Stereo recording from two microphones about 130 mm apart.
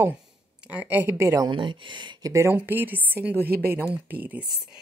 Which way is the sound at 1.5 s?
40° right (ahead or behind).